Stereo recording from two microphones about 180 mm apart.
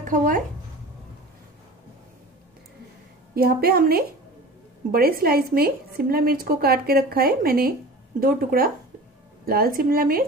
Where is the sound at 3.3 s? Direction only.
55° right (ahead or behind).